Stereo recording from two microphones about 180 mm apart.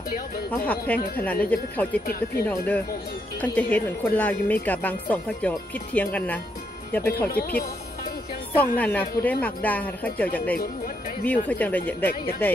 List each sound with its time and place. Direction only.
0.9 s speech: 10° left (ahead or behind)
2.0 s speech: 60° left (ahead or behind)
2.4 s speech: 10° left (ahead or behind)
7.2 s speech: 55° left (ahead or behind)
8.5 s speech: 10° left (ahead or behind)